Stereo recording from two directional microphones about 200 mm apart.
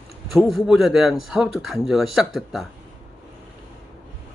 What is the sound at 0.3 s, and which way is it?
Speech, centre (ahead or behind).